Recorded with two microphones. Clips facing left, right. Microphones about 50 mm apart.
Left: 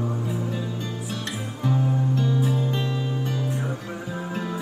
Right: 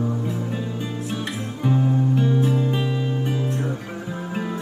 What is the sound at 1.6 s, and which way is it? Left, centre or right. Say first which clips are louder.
Guitar: right 4 dB; centre.